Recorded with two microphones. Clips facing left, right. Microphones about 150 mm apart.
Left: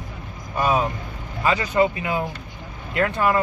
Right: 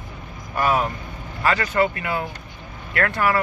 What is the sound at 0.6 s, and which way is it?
Speech, 15° left (ahead or behind).